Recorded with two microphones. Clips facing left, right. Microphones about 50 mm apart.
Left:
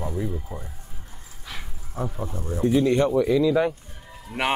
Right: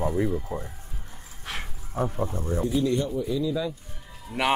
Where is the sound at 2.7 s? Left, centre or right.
Left.